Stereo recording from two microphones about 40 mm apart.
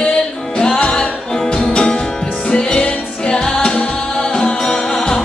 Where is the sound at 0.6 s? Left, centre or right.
Centre.